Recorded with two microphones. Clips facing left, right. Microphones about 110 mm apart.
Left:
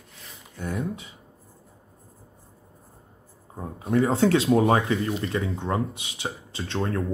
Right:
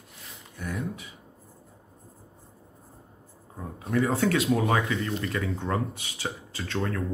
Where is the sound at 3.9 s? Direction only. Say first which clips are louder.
Left 4 dB; 25° left (ahead or behind).